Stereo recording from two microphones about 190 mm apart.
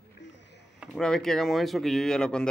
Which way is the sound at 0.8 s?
Centre (ahead or behind).